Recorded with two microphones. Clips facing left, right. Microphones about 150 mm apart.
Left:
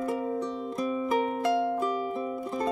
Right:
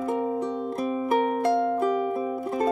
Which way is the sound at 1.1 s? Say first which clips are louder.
Right 5 dB; 55° right (ahead or behind).